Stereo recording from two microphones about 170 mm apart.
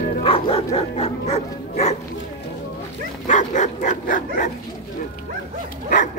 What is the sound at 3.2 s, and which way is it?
Dog, 45° left (ahead or behind).